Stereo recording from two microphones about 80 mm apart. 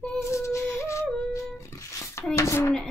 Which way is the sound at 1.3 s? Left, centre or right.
Left.